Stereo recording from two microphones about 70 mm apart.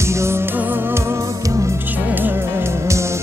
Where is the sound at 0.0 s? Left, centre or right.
Right.